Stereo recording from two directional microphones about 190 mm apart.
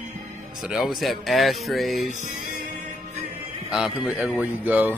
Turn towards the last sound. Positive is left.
turn(degrees=-10)  # may be behind; listen again after turning